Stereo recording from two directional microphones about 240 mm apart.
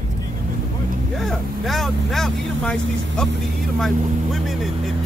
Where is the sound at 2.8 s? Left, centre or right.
Right.